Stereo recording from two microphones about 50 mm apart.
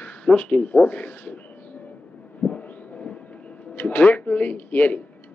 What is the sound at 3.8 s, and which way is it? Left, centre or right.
Speech, left.